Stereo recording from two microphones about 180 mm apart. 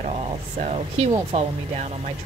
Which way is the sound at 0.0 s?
40° right (ahead or behind).